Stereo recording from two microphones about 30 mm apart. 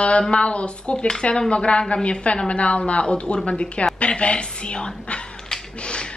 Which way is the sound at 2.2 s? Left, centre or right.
Left.